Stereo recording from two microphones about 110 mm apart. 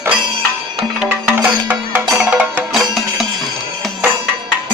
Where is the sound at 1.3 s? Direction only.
15° right (ahead or behind); by 3.3 s centre (ahead or behind).